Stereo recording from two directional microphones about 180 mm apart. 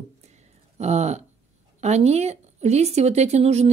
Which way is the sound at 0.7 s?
40° right (ahead or behind).